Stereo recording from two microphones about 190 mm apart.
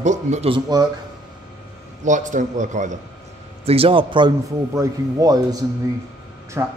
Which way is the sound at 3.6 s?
30° right (ahead or behind).